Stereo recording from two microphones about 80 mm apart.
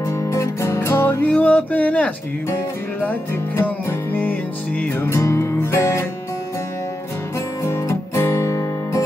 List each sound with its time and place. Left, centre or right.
0.2 s music: left
1.2 s music: centre
3.6 s music: left
5.1 s music: left
7.6 s music: left